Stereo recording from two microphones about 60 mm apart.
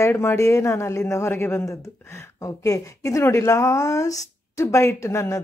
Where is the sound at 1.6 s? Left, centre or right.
Left.